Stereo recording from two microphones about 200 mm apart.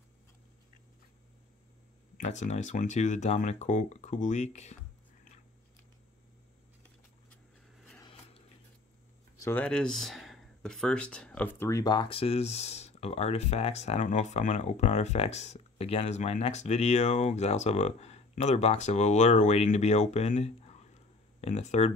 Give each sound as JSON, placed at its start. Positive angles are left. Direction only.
{"t": 2.1, "sound": "speech", "side_deg": 35}
{"t": 9.4, "sound": "speech", "side_deg": 10}